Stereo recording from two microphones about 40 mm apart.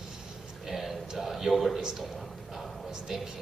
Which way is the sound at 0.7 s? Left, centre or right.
Centre.